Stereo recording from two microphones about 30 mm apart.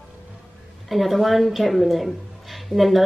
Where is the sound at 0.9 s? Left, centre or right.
Centre.